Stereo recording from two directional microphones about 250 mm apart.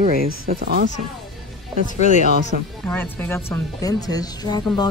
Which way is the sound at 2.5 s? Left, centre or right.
Right.